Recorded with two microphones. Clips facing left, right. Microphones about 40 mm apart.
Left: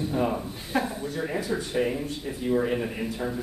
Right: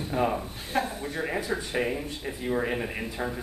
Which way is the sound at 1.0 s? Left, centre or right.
Right.